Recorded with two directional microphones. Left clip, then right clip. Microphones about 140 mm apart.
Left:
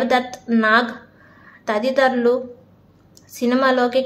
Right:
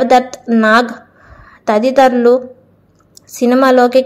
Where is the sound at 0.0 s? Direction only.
45° right (ahead or behind).